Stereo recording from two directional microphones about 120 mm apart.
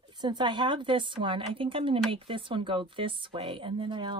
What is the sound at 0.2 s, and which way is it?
Speech, 40° right (ahead or behind).